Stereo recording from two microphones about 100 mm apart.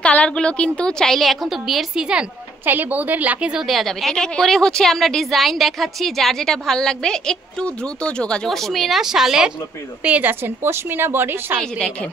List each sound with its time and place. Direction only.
0.0 s a woman's voice: 10° left (ahead or behind); by 2.2 s 10° right (ahead or behind)
2.6 s a woman's voice: 20° right (ahead or behind)
10.0 s a woman's voice: 15° right (ahead or behind)
11.6 s a woman's voice: 5° left (ahead or behind)